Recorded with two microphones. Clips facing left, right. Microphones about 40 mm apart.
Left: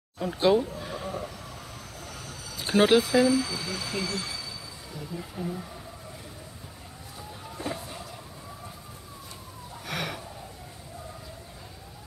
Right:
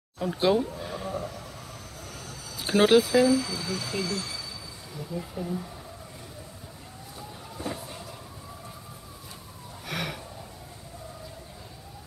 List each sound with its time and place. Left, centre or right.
0.2 s speech: centre
0.7 s sheep: centre
2.6 s speech: centre
3.3 s speech: left
5.1 s speech: centre
9.8 s gasp: centre